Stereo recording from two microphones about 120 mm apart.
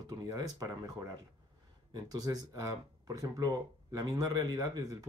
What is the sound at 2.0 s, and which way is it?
Speech, 30° right (ahead or behind).